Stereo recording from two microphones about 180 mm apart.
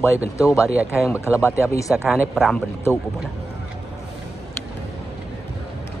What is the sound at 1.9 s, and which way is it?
Speech, centre (ahead or behind).